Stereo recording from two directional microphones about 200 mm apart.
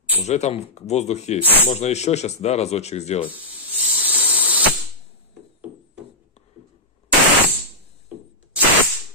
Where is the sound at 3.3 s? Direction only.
10° right (ahead or behind).